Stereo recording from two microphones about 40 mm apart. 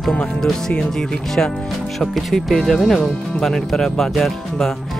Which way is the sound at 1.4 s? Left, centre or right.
Left.